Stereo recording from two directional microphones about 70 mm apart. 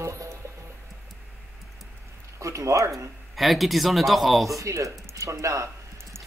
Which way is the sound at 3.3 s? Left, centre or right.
Centre.